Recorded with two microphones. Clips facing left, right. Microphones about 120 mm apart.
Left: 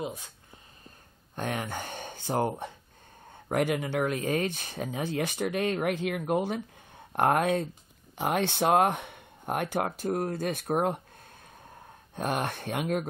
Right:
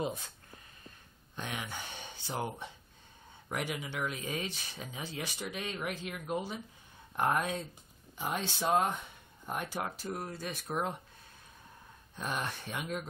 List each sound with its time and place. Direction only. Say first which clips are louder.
1.3 s speech: left 8 dB; 50° left (ahead or behind)
12.2 s speech: left 7 dB; 55° left (ahead or behind)